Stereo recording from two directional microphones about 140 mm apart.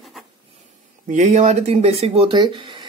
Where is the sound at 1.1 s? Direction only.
60° right (ahead or behind); by 2.8 s 35° right (ahead or behind).